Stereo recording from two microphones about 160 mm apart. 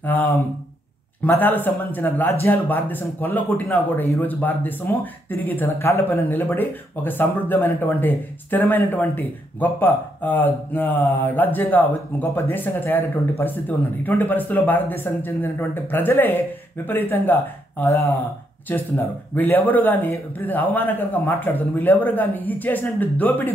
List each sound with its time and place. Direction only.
0.0 s speech: 15° left (ahead or behind)